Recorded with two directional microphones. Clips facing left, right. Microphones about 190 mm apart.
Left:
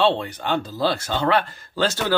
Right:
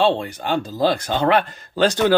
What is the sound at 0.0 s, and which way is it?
Speech, 10° right (ahead or behind).